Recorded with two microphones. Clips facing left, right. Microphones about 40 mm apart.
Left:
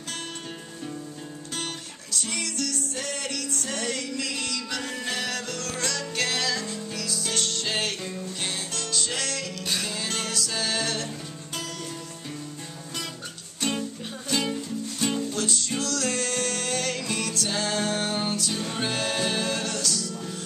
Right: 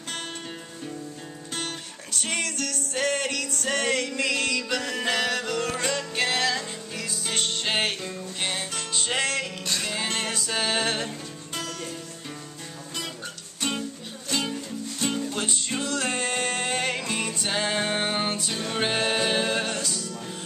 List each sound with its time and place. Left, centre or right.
2.0 s music: right
4.5 s music: right
4.7 s music: right
5.6 s music: right
13.6 s music: centre
15.0 s music: centre
15.3 s music: right